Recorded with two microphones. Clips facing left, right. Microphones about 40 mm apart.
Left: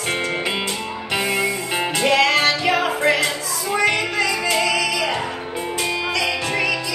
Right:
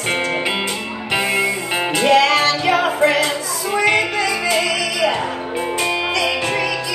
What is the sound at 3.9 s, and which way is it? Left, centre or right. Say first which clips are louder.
Music: right 3 dB; centre.